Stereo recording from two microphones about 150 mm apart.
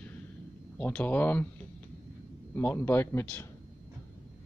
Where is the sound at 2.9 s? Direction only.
15° left (ahead or behind).